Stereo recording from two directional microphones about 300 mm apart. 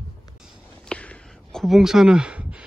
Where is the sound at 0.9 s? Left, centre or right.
Centre.